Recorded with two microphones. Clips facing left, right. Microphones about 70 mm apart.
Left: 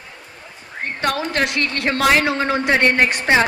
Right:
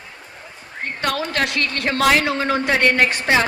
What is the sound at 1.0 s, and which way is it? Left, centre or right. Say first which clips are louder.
A man's voice: left 1 dB; left.